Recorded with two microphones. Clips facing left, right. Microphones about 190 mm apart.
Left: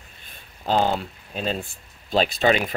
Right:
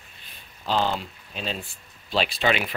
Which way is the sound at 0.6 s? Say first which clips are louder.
Left 3 dB; 50° left (ahead or behind).